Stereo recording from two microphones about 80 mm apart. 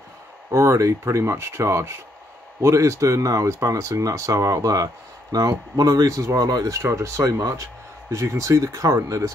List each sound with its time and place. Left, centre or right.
0.5 s speech: right